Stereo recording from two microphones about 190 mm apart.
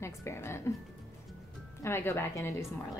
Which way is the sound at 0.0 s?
15° left (ahead or behind).